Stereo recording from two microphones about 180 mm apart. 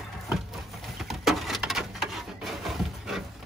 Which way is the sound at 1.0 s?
Centre (ahead or behind).